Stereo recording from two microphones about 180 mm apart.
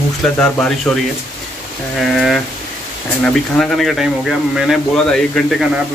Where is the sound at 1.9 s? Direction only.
Centre (ahead or behind).